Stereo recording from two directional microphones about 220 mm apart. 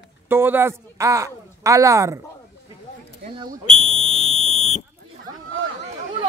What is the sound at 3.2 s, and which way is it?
Speech, 40° right (ahead or behind).